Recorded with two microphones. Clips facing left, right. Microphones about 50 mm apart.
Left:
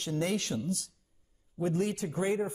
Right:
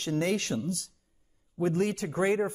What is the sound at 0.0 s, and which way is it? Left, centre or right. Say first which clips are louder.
Speech: right 3 dB; right.